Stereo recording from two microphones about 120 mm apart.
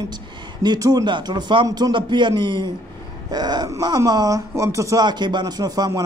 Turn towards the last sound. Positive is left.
turn(degrees=-30)  # may be behind; listen again after turning